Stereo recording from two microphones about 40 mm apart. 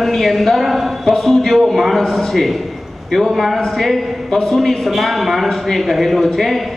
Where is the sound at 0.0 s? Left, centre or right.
Centre.